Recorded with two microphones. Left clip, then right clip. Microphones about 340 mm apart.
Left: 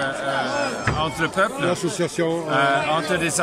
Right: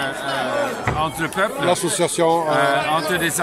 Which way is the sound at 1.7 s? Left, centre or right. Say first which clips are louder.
Right 4 dB; centre.